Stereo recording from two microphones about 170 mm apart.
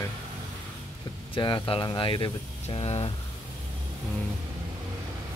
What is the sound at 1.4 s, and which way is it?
Speech, 25° left (ahead or behind).